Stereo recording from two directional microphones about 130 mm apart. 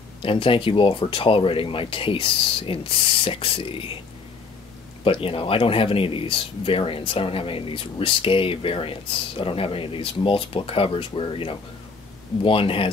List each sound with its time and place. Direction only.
0.2 s speech: 45° left (ahead or behind)
5.0 s speech: 45° left (ahead or behind)